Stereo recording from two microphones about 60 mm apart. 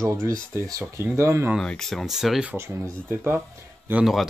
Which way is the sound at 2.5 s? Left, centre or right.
Right.